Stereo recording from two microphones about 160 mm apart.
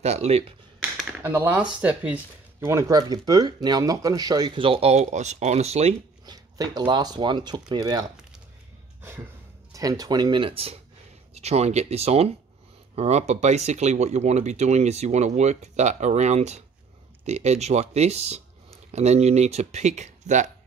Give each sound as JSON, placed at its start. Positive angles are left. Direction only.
{"t": 0.0, "sound": "speech", "side_deg": -40}
{"t": 1.2, "sound": "speech", "side_deg": -10}
{"t": 2.6, "sound": "speech", "side_deg": -20}
{"t": 6.2, "sound": "speech", "side_deg": -25}
{"t": 9.7, "sound": "speech", "side_deg": -20}